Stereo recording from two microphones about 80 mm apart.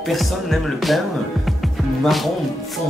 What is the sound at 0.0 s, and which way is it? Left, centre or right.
Speech, centre.